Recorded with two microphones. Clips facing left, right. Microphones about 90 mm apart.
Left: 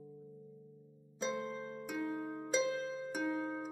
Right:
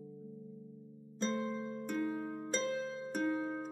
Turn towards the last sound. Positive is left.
turn(degrees=0)  # may be behind; listen again after turning